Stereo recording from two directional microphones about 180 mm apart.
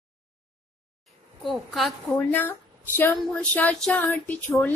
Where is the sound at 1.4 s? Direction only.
Centre (ahead or behind).